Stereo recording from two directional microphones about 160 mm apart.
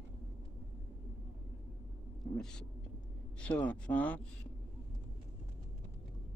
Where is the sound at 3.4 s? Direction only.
5° left (ahead or behind).